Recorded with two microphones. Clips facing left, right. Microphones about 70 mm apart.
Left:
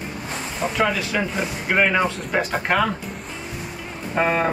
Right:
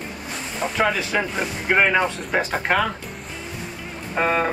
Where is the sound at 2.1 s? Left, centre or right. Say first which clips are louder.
Even; centre.